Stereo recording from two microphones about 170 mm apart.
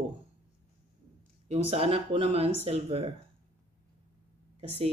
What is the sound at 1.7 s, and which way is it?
Speech, 35° right (ahead or behind).